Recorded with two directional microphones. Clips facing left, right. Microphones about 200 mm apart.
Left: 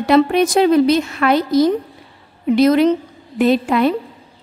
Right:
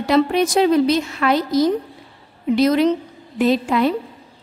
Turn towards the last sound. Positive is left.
turn(degrees=60)  # may be behind; listen again after turning